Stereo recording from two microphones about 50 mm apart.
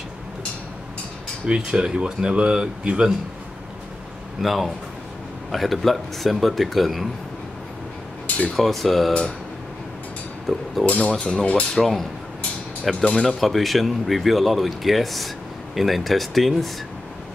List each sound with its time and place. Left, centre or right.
1.4 s speech: right
4.4 s speech: centre
8.5 s speech: centre
10.5 s speech: centre
10.9 s speech: left
11.7 s speech: centre
13.0 s speech: centre
13.4 s speech: centre